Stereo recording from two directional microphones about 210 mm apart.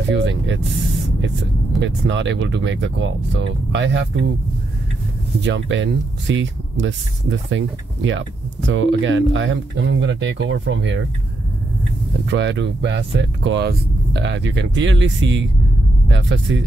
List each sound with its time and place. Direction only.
0.1 s speech: 60° right (ahead or behind)
1.8 s speech: 60° right (ahead or behind)
5.4 s speech: 60° right (ahead or behind)
12.3 s speech: 60° right (ahead or behind)